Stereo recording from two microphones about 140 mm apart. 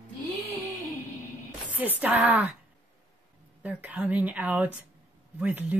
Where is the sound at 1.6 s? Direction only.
10° right (ahead or behind).